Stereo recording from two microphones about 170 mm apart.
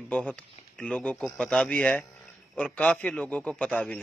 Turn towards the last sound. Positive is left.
turn(degrees=5)  # may be behind; listen again after turning